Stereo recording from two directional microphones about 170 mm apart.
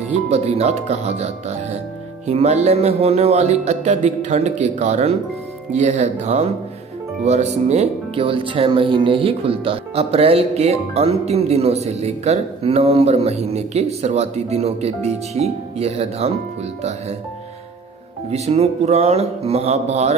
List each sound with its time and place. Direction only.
0.1 s speech: 40° right (ahead or behind)
18.3 s speech: 40° right (ahead or behind)